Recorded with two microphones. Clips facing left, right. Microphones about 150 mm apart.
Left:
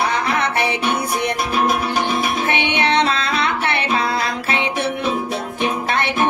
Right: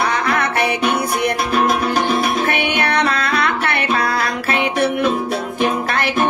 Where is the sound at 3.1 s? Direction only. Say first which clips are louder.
Right 2 dB; 55° right (ahead or behind).